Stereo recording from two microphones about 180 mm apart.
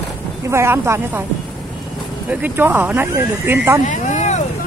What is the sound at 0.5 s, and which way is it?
Speech, 15° right (ahead or behind).